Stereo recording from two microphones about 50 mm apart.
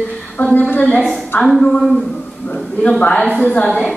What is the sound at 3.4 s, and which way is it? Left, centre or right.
Speech, left.